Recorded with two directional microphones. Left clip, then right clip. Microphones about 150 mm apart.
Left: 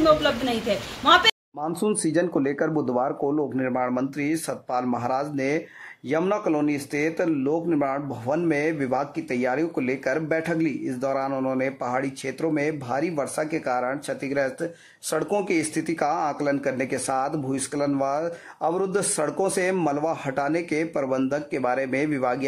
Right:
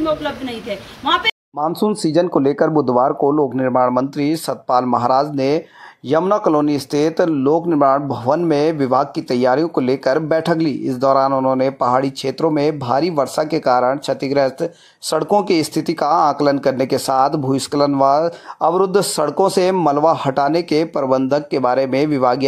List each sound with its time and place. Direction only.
1.0 s speech: 10° right (ahead or behind)
1.6 s speech: 30° right (ahead or behind)